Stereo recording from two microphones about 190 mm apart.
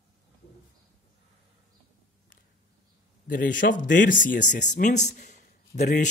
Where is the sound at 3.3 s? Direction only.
45° left (ahead or behind).